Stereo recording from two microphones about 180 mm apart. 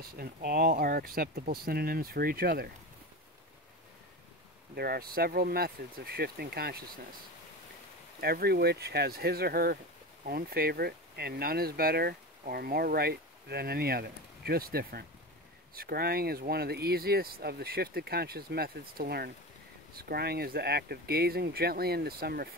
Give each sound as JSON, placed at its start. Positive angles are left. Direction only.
{"t": 0.0, "sound": "speech", "side_deg": -55}
{"t": 4.7, "sound": "speech", "side_deg": -60}
{"t": 8.2, "sound": "speech", "side_deg": -60}